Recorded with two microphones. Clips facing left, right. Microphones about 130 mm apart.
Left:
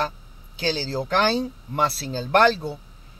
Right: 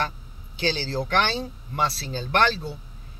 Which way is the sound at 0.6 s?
35° left (ahead or behind).